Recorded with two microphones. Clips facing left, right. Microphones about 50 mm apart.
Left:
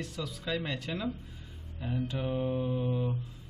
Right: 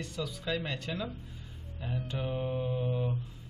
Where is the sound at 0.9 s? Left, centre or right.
Centre.